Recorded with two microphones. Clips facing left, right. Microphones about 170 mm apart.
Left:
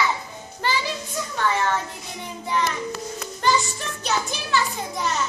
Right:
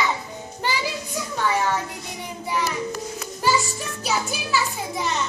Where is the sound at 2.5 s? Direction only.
10° right (ahead or behind).